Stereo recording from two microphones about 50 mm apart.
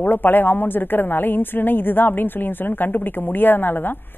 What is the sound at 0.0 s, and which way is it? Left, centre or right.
A woman's voice, left.